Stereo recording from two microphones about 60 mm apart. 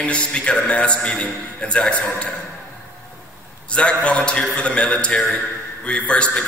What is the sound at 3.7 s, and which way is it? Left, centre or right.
A man's voice, centre.